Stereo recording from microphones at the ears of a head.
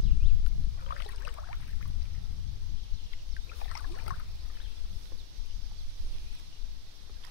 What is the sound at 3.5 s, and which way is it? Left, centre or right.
Boat, left.